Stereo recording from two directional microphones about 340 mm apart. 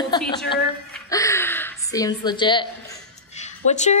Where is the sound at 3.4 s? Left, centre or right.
Centre.